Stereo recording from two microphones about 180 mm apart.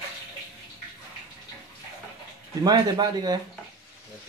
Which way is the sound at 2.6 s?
25° right (ahead or behind).